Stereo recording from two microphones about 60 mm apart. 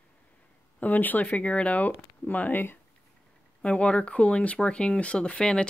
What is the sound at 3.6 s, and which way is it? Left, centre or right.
Speech, centre.